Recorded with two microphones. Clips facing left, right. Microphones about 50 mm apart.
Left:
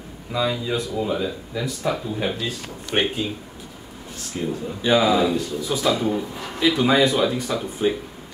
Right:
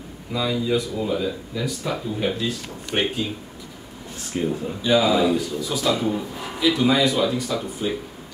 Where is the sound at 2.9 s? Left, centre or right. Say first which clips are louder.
Left 1 dB; left.